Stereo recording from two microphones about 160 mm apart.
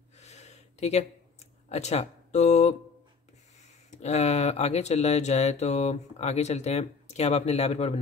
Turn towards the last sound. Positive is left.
turn(degrees=40)  # may be behind; listen again after turning